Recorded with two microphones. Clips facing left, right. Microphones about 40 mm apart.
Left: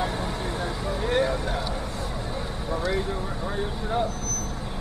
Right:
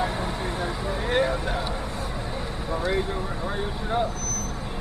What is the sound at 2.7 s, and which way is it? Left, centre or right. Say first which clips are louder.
Speech: right 1 dB; right.